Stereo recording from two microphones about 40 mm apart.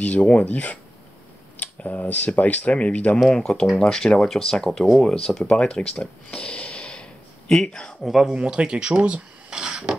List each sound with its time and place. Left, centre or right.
0.0 s speech: left
3.3 s speech: centre
5.0 s speech: centre
8.0 s speech: centre
8.3 s speech: right